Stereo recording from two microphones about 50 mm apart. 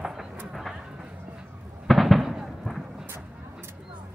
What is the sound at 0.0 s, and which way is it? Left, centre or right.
Vehicle, centre.